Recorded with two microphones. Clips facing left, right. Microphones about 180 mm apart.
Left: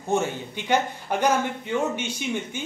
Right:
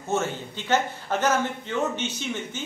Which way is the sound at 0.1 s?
15° left (ahead or behind).